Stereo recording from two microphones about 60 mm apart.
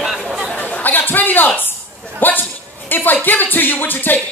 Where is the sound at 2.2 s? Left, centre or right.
Left.